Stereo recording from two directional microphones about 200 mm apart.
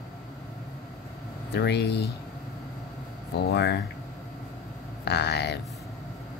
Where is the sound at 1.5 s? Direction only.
55° left (ahead or behind).